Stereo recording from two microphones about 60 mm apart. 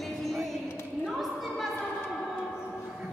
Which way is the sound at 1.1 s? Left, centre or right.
Centre.